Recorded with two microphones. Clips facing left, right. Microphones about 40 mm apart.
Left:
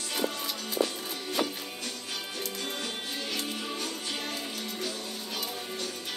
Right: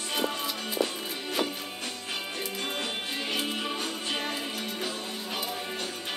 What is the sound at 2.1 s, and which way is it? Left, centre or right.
Music, right.